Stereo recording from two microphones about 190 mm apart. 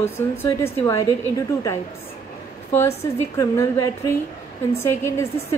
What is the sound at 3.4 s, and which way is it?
A woman's voice, 15° left (ahead or behind).